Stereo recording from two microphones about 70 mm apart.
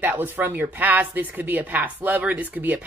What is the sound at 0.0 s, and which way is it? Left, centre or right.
Speech, right.